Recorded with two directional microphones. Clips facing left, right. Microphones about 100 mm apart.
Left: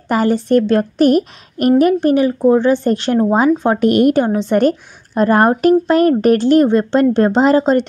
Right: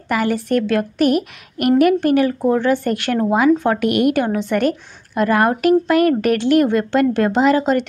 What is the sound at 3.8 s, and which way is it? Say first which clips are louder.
A woman's voice: left 4 dB; 35° left (ahead or behind).